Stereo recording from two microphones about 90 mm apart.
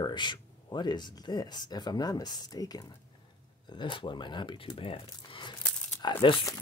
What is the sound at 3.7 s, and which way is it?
Speech, 60° left (ahead or behind).